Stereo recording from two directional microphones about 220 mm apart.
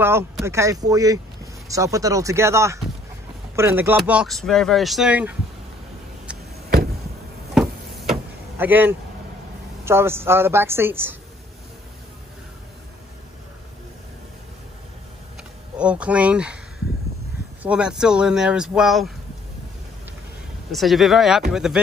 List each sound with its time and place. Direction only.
0.0 s a woman's voice: 10° right (ahead or behind)
7.5 s vehicle: centre (ahead or behind)
9.8 s a woman's voice: 10° right (ahead or behind)
15.8 s speech: 5° right (ahead or behind)
17.6 s speech: 5° right (ahead or behind)
20.7 s speech: centre (ahead or behind)